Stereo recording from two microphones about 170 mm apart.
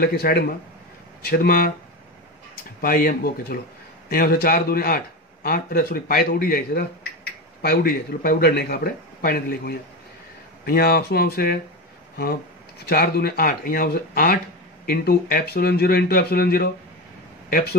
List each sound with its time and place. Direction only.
0.0 s speech: 65° left (ahead or behind)
2.8 s speech: 55° left (ahead or behind)
12.8 s speech: 65° left (ahead or behind)